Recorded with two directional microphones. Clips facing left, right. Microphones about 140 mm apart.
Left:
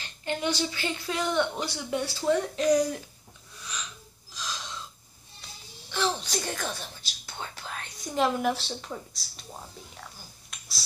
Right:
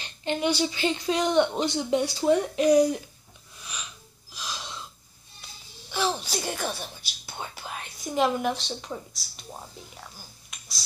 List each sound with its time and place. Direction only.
0.0 s a sound: 20° right (ahead or behind)
0.5 s speech: 15° right (ahead or behind)
4.3 s wheeze: 10° right (ahead or behind)
5.9 s speech: 10° right (ahead or behind)
7.2 s whispering: 10° right (ahead or behind)
8.2 s speech: centre (ahead or behind)
10.5 s a sound: centre (ahead or behind)